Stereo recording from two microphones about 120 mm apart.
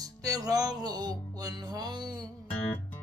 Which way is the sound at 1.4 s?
35° right (ahead or behind).